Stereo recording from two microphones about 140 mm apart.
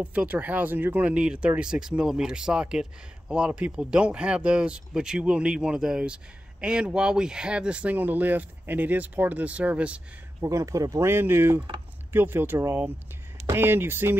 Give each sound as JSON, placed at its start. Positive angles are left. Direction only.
{"t": 0.0, "sound": "speech", "side_deg": -10}
{"t": 10.4, "sound": "speech", "side_deg": -20}